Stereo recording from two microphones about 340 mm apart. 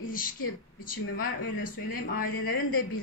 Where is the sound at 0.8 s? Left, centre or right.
Left.